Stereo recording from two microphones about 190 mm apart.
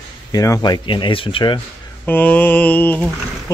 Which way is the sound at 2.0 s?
10° left (ahead or behind).